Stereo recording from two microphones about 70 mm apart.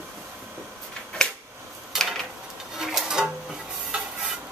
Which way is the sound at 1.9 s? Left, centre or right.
Centre.